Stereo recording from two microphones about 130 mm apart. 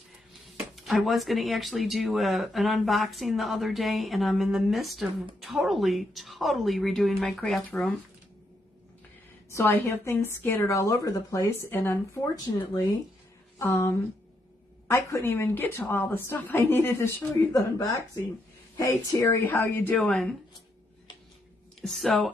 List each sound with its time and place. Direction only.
0.7 s speech: centre (ahead or behind)
9.5 s a woman's voice: 20° left (ahead or behind)
13.6 s a woman's voice: 20° left (ahead or behind)
21.8 s speech: centre (ahead or behind)